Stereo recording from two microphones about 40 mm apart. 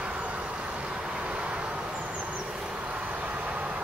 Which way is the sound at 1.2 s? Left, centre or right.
Right.